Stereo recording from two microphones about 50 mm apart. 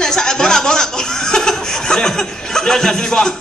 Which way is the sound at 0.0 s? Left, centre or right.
Centre.